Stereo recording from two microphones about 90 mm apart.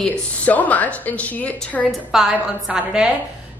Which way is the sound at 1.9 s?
5° right (ahead or behind).